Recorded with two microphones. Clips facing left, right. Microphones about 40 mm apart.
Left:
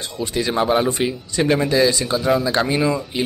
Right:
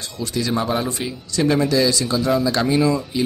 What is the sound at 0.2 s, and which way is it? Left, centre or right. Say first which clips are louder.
Speech: left 2 dB; left.